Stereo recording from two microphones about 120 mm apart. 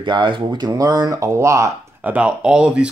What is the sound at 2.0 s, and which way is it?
Speech, 10° right (ahead or behind).